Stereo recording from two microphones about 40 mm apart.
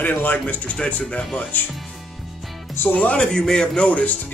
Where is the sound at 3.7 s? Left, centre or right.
Left.